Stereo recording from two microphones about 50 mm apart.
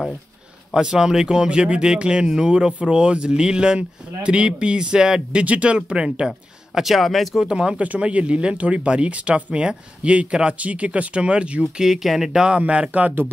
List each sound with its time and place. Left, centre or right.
0.7 s speech: centre
5.4 s speech: right; by 7.2 s centre
7.3 s speech: centre
11.7 s speech: centre; by 13.1 s right